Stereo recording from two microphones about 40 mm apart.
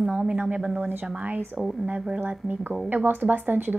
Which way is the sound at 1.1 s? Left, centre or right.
Right.